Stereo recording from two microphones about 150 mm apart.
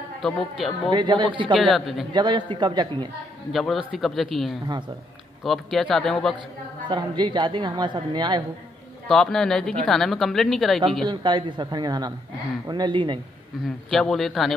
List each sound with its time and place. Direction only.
0.2 s speech: centre (ahead or behind)
0.9 s a woman's voice: 30° right (ahead or behind)
1.6 s speech: centre (ahead or behind)
2.1 s a woman's voice: 30° right (ahead or behind)
3.5 s speech: centre (ahead or behind)
6.9 s a woman's voice: 30° right (ahead or behind)
9.1 s speech: 5° left (ahead or behind)
11.1 s a woman's voice: 30° right (ahead or behind)
13.8 s speech: centre (ahead or behind)